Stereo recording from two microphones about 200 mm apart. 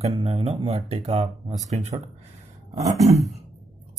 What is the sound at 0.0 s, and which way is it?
Speech, 30° right (ahead or behind).